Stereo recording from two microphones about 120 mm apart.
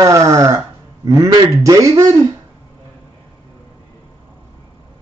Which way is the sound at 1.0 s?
25° right (ahead or behind).